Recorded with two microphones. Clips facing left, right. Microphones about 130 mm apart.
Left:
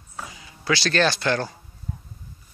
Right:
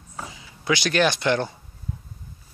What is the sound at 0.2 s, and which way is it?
Speech, 15° right (ahead or behind).